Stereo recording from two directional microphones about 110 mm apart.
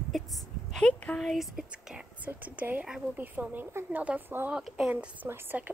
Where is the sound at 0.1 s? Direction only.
Centre (ahead or behind).